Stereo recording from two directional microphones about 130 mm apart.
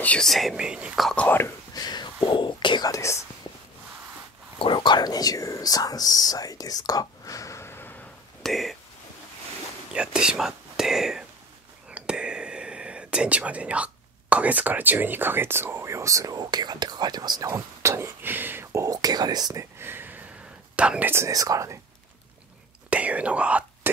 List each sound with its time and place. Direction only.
0.0 s speech: 5° left (ahead or behind)
1.2 s speech: 15° left (ahead or behind)
1.8 s a sound: 30° left (ahead or behind)
2.2 s whispering: 40° left (ahead or behind); by 3.3 s 20° left (ahead or behind)
4.6 s speech: 40° left (ahead or behind); by 8.0 s 15° left (ahead or behind)
8.4 s speech: centre (ahead or behind)
9.9 s speech: 5° right (ahead or behind)
21.1 s speech: 25° right (ahead or behind)
22.8 s whispering: 10° right (ahead or behind)